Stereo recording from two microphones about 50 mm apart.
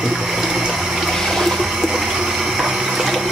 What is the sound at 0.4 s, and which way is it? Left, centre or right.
Water, centre.